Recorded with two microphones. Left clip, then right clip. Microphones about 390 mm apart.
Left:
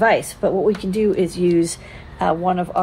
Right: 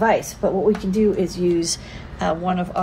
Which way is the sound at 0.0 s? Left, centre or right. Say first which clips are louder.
Left 2 dB; left.